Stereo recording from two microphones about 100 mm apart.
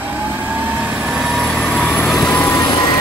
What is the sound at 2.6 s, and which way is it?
Vehicle, 50° left (ahead or behind).